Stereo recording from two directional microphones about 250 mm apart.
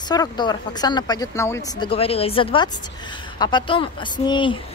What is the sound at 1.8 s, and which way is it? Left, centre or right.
Speech, left.